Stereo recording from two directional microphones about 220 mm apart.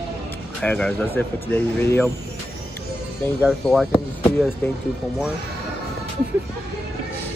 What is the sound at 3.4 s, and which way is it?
Speech, centre (ahead or behind).